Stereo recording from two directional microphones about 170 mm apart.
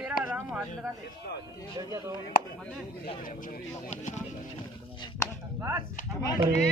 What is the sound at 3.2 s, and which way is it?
Speech, 55° left (ahead or behind).